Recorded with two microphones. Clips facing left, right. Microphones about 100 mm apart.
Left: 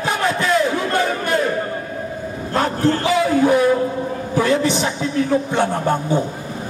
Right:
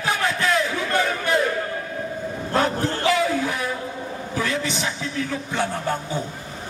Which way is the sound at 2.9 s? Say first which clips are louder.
Left 4 dB; 40° left (ahead or behind).